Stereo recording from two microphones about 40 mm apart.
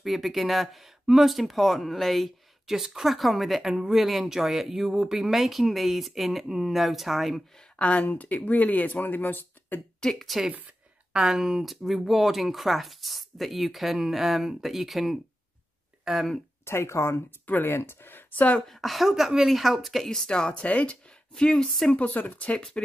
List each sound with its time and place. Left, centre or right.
0.0 s speech: centre
2.6 s speech: centre
7.8 s speech: left
8.1 s speech: left
10.1 s speech: centre
11.1 s speech: centre
16.6 s speech: left
17.5 s speech: left
18.7 s speech: centre
20.2 s speech: left
20.6 s speech: left
20.9 s speech: left
21.9 s speech: left